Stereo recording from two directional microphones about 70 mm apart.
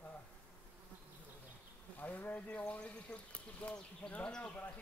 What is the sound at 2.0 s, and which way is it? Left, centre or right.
Speech, left.